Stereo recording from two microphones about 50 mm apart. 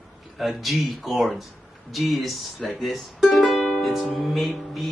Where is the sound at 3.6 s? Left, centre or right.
Centre.